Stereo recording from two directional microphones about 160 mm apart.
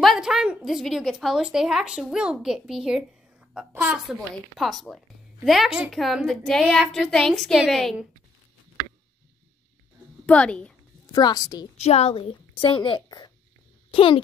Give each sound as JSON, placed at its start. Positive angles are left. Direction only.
{"t": 0.0, "sound": "a woman's voice", "side_deg": 0}
{"t": 10.2, "sound": "a woman's voice", "side_deg": 5}
{"t": 11.1, "sound": "a woman's voice", "side_deg": 25}
{"t": 11.7, "sound": "a woman's voice", "side_deg": 40}